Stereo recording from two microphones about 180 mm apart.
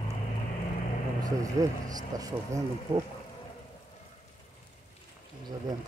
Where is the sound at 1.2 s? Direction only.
20° right (ahead or behind).